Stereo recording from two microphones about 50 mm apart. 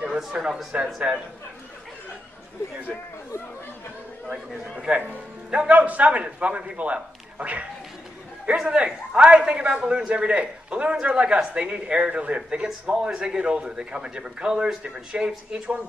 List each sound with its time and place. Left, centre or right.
0.0 s a man's voice: centre
4.3 s a man's voice: centre
4.9 s a man's voice: right; by 15.7 s centre